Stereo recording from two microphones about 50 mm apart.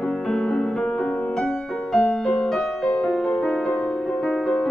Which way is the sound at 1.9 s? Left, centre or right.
Centre.